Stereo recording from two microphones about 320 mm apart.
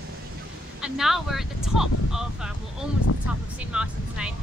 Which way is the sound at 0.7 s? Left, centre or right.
Centre.